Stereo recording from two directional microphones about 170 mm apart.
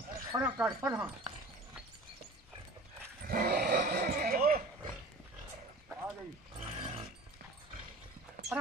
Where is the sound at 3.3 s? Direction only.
55° right (ahead or behind).